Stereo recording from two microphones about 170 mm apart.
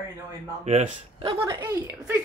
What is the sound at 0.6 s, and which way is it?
Speech, 40° right (ahead or behind).